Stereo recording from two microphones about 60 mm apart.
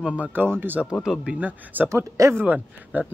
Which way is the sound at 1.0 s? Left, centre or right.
Centre.